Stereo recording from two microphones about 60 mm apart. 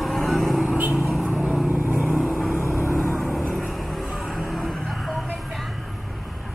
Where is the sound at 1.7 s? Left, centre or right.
Right.